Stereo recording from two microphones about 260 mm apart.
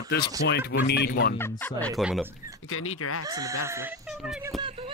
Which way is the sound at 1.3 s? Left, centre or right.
Centre.